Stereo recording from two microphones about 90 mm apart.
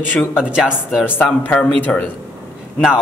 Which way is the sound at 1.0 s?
20° left (ahead or behind).